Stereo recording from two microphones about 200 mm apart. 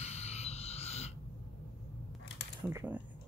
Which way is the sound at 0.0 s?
30° left (ahead or behind).